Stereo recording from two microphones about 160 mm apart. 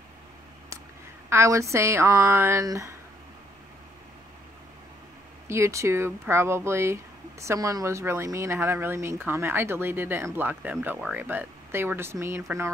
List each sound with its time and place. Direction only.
1.3 s speech: 20° right (ahead or behind)
5.5 s speech: 20° right (ahead or behind)